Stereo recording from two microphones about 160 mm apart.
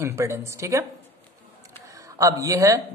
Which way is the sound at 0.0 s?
15° right (ahead or behind).